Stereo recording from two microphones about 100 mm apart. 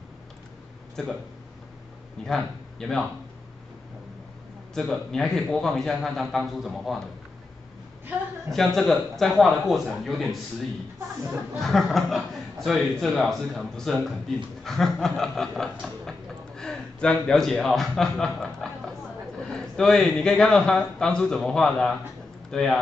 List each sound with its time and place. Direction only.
2.2 s a man's voice: 5° left (ahead or behind)
4.7 s a man's voice: 5° left (ahead or behind)
8.5 s a man's voice: centre (ahead or behind)
11.6 s a man's voice: centre (ahead or behind)
14.6 s a sound: 5° left (ahead or behind)
19.5 s speech: 5° left (ahead or behind)